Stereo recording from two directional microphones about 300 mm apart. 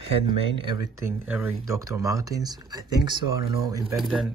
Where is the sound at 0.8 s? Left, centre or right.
Centre.